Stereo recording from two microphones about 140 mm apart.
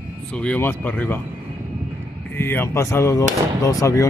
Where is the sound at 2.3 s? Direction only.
15° left (ahead or behind).